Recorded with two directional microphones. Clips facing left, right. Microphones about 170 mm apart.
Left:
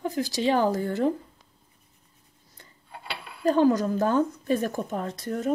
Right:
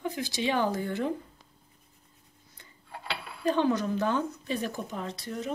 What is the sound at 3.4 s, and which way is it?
Speech, 40° left (ahead or behind).